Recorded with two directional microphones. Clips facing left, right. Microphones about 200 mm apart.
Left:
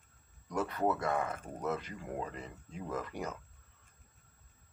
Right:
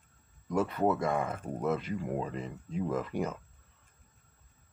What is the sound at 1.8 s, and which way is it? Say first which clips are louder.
Speech: right 6 dB; 25° right (ahead or behind).